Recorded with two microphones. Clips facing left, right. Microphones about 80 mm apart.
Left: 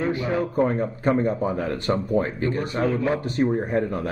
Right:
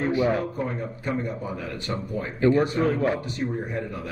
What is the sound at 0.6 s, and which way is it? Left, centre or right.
Speech, left.